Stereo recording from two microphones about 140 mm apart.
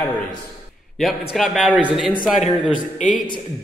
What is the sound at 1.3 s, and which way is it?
Speech, centre (ahead or behind).